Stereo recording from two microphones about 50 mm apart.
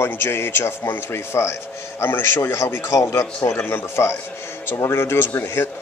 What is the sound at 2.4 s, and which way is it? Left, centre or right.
Speech, left.